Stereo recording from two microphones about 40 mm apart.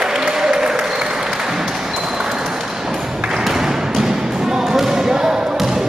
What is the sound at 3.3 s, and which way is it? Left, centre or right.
Music, centre.